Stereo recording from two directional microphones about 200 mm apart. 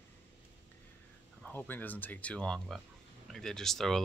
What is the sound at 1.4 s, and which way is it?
Speech, 10° left (ahead or behind).